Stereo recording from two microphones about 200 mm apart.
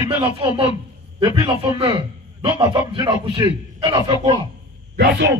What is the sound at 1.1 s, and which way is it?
Speech, 20° right (ahead or behind).